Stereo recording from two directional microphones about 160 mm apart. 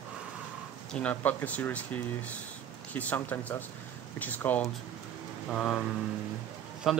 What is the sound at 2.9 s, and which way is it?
A man's voice, 10° left (ahead or behind).